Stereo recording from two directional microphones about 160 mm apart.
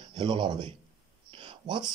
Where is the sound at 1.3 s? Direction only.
30° right (ahead or behind).